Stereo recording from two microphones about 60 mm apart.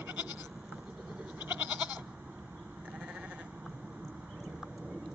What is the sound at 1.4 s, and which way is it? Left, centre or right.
Goat, right.